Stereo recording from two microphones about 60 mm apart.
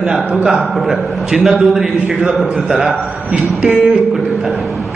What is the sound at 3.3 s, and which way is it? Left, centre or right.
Speech, centre.